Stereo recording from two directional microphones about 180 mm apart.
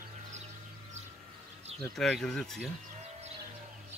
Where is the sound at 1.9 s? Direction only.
Centre (ahead or behind).